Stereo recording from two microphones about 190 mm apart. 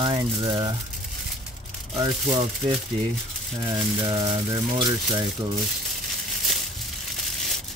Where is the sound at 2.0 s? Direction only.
25° right (ahead or behind).